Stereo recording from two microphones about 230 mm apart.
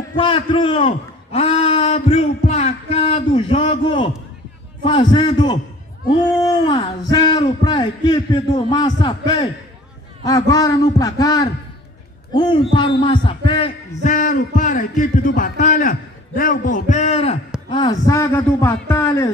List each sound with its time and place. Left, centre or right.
0.1 s a man's voice: left
6.7 s a man's voice: centre